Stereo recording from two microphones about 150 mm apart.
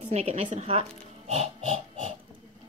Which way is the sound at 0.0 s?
45° right (ahead or behind).